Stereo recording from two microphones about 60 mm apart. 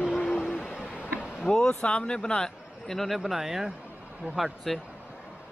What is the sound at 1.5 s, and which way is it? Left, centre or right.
Speech, centre.